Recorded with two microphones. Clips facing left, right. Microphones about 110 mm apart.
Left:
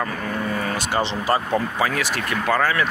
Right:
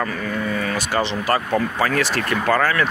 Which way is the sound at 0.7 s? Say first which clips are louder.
Right 1 dB; 20° left (ahead or behind).